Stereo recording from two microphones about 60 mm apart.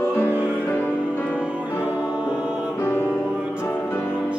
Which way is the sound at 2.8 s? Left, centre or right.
Left.